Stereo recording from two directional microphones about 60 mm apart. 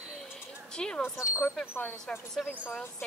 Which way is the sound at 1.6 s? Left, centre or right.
Left.